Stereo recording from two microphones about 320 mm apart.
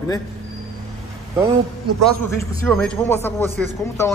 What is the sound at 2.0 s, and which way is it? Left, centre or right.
A man's voice, centre.